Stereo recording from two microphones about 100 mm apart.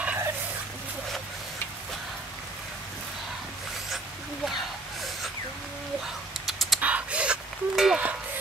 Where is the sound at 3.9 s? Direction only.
Centre (ahead or behind).